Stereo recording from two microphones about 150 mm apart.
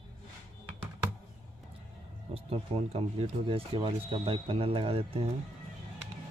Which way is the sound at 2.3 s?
40° right (ahead or behind).